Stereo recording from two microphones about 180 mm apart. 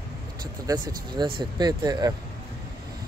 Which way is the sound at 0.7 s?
25° right (ahead or behind).